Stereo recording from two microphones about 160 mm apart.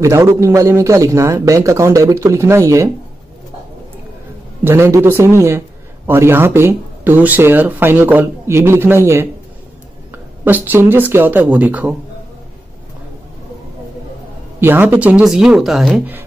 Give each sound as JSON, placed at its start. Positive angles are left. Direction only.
{"t": 0.0, "sound": "speech", "side_deg": -15}
{"t": 4.6, "sound": "speech", "side_deg": -15}
{"t": 14.6, "sound": "speech", "side_deg": -15}